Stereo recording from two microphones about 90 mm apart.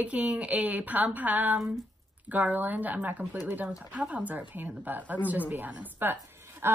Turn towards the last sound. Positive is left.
turn(degrees=-30)  # may be behind; listen again after turning